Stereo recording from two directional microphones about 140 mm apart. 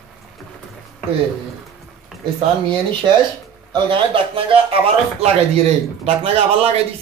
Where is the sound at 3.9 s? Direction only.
40° right (ahead or behind).